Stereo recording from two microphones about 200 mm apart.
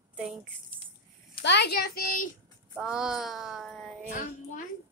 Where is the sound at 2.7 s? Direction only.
5° right (ahead or behind).